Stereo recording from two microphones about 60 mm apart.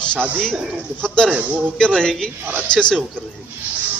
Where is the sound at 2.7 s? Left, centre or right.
Centre.